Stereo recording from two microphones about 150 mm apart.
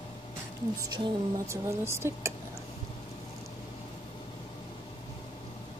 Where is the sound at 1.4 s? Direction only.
20° right (ahead or behind).